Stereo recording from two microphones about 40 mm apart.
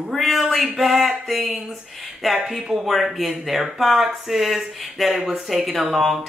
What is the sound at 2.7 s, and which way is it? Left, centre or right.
Speech, centre.